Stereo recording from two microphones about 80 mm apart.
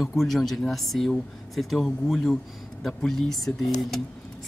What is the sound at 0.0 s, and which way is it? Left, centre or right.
Speech, centre.